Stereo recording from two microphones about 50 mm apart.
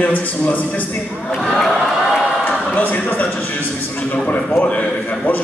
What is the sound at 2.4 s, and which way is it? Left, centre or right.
A man's voice, left.